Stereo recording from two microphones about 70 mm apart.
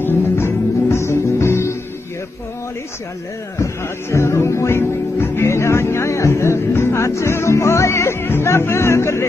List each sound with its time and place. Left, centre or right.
0.0 s music: left
3.6 s speech: left